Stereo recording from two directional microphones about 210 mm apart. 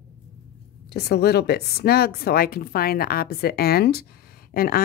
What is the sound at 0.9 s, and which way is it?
A woman's voice, 50° left (ahead or behind).